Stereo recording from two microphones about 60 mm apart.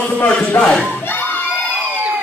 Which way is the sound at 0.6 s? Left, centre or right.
Centre.